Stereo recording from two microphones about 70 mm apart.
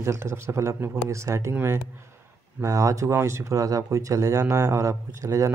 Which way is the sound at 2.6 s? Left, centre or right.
Right.